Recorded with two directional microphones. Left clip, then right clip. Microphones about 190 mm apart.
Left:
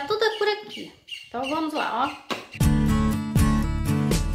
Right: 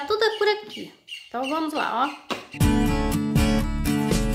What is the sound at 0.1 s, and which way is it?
Speech, 25° right (ahead or behind).